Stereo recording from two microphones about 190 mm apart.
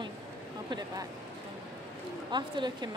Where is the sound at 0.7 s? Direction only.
20° right (ahead or behind).